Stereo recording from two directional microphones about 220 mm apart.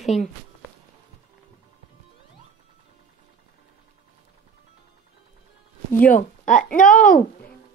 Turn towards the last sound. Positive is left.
turn(degrees=40)  # may be behind; listen again after turning